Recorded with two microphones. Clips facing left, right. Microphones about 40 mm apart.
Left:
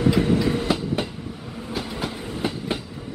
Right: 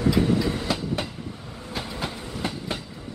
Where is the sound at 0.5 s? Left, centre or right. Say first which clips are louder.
Left 4 dB; centre.